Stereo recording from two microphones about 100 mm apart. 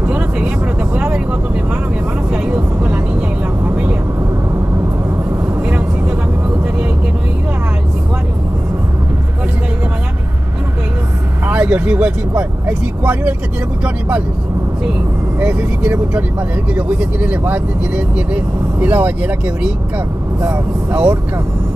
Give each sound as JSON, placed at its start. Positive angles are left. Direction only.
{"t": 0.0, "sound": "vehicle", "side_deg": -15}
{"t": 2.3, "sound": "vehicle", "side_deg": -15}
{"t": 11.4, "sound": "vehicle", "side_deg": -15}
{"t": 13.8, "sound": "speech", "side_deg": -15}
{"t": 15.4, "sound": "speech", "side_deg": -15}